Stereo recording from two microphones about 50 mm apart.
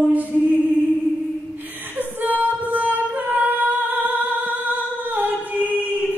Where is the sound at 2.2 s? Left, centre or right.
Right.